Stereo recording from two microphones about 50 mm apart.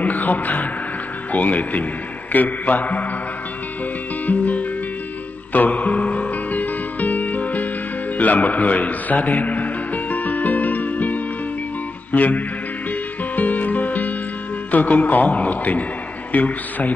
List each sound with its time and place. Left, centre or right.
0.0 s a man's voice: left
4.3 s music: left
14.7 s a man's voice: left